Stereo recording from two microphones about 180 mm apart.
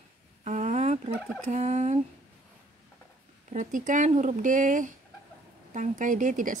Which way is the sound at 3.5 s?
45° right (ahead or behind).